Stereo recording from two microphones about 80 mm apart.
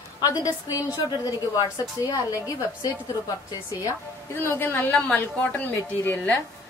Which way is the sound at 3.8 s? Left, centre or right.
Left.